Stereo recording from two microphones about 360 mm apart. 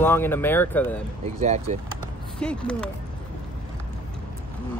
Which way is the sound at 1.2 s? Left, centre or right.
Centre.